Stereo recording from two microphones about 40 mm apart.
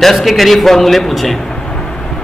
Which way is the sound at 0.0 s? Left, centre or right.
Centre.